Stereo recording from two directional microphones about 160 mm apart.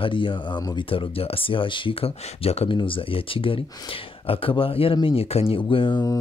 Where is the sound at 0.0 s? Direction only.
30° left (ahead or behind).